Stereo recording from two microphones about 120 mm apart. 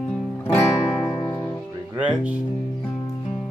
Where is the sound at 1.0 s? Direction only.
35° left (ahead or behind).